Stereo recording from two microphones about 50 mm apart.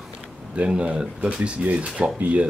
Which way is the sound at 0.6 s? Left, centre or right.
Right.